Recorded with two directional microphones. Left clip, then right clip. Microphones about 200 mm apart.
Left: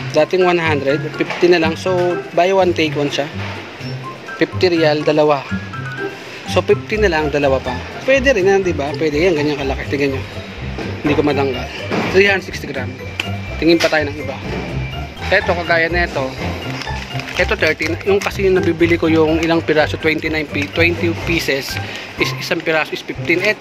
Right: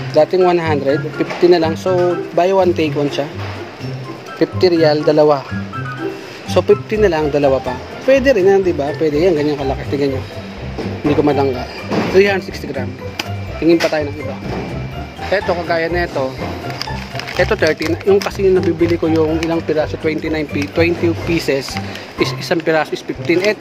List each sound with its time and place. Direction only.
0.2 s speech: 5° right (ahead or behind)
4.4 s speech: 10° right (ahead or behind)
6.5 s speech: 10° right (ahead or behind)
12.1 s speech: 10° right (ahead or behind)
15.3 s speech: 10° right (ahead or behind)
17.4 s speech: 20° right (ahead or behind)
18.1 s speech: 5° right (ahead or behind)
20.2 s speech: 15° right (ahead or behind)